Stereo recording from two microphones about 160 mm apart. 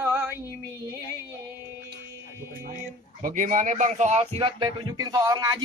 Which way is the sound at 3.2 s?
55° right (ahead or behind).